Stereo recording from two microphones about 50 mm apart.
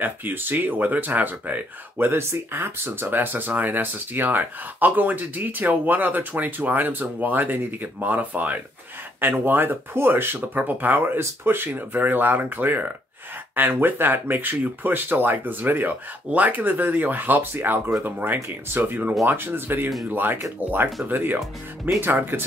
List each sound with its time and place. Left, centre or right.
0.0 s speech: right
2.0 s speech: right
10.5 s speech: right
11.1 s speech: right
19.2 s speech: right